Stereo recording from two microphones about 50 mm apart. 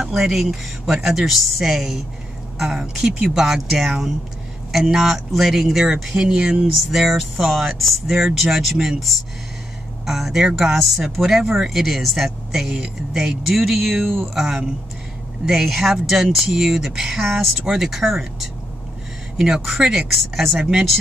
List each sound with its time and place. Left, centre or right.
0.1 s speech: centre
4.9 s speech: centre
6.9 s speech: centre
20.2 s speech: centre
20.5 s speech: centre